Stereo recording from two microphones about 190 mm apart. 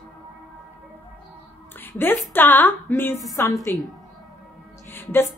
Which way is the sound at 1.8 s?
10° left (ahead or behind).